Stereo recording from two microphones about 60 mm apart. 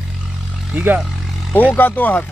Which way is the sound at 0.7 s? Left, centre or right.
Right.